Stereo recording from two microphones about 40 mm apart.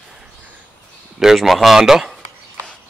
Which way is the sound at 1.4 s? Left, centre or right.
Centre.